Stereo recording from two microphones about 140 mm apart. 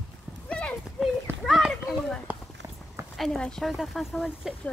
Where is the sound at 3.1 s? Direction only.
Centre (ahead or behind).